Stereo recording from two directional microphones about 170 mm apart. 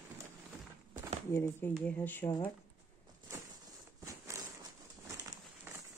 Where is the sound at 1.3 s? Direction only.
15° left (ahead or behind).